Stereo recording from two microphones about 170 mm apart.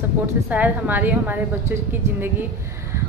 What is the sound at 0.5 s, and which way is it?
A woman's voice, 10° right (ahead or behind).